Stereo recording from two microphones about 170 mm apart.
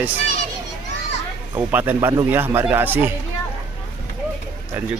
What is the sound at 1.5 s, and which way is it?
Speech, 10° right (ahead or behind).